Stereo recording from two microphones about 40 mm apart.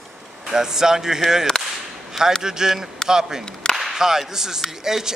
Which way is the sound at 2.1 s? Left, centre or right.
Centre.